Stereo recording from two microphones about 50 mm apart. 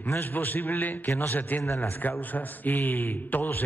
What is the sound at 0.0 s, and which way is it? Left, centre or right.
Speech, left.